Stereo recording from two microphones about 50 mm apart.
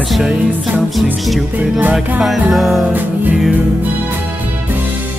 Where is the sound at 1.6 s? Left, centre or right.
Right.